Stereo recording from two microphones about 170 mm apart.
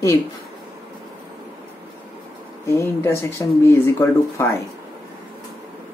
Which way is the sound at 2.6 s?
15° left (ahead or behind).